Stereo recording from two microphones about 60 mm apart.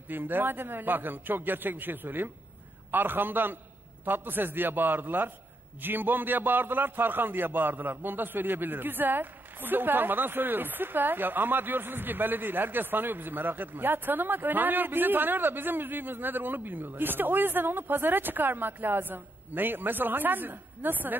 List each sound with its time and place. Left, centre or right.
0.1 s a man's voice: right